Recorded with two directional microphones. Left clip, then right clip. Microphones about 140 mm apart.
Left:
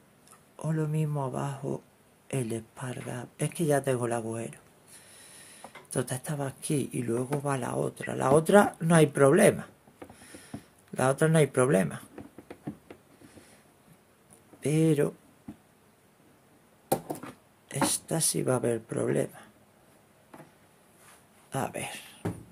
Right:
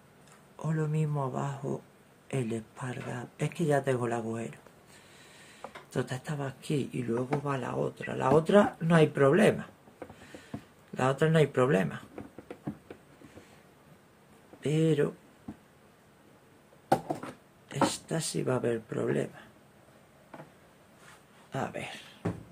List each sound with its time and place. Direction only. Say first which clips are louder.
0.6 s speech: left 1 dB; 35° left (ahead or behind)
5.9 s speech: left 2 dB; 45° left (ahead or behind)
14.6 s speech: left 2 dB; 45° left (ahead or behind)
17.6 s speech: even; 50° left (ahead or behind)
21.5 s a sound: left 2 dB; 55° left (ahead or behind)